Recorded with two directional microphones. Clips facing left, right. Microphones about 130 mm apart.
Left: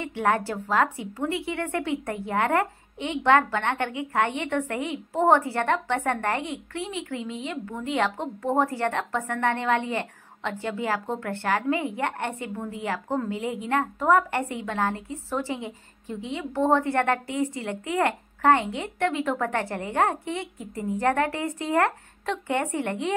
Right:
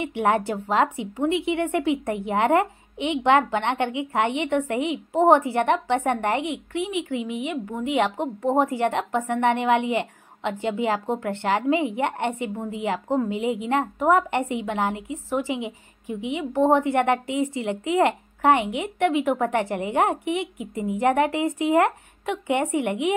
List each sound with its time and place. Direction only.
0.0 s a woman's voice: 20° right (ahead or behind)